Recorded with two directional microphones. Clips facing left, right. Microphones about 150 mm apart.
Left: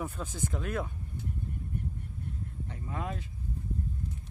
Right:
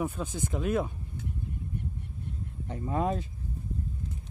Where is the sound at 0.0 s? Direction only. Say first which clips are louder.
Right 4 dB; 15° right (ahead or behind).